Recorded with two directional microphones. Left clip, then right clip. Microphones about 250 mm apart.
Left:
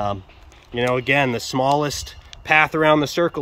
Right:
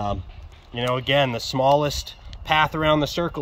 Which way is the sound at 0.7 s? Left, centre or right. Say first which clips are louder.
Left 3 dB; centre.